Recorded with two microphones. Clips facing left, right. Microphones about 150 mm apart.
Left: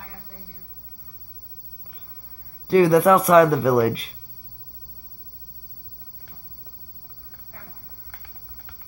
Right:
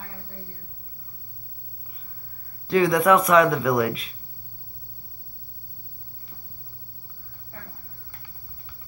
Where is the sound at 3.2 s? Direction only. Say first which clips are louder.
Left 3 dB; 35° left (ahead or behind).